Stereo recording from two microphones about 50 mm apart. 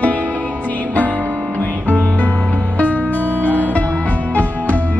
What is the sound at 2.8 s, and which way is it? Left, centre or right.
Music, left.